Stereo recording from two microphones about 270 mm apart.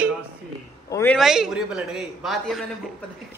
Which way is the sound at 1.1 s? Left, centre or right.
Centre.